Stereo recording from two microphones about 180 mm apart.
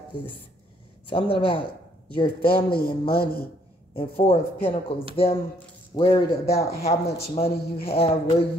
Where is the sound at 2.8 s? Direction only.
60° left (ahead or behind).